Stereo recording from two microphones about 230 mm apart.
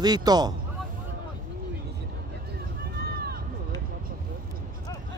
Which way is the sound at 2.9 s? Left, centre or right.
Right.